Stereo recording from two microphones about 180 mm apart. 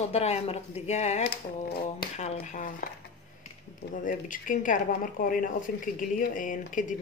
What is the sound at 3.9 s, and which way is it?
Speech, 45° left (ahead or behind).